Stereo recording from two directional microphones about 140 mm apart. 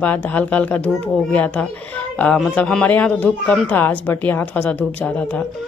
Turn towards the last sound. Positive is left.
turn(degrees=10)  # may be behind; listen again after turning